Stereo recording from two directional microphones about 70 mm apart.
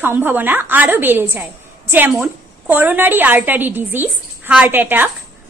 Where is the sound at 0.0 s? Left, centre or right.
Right.